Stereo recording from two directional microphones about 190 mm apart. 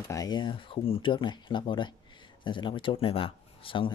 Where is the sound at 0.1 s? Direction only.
20° left (ahead or behind).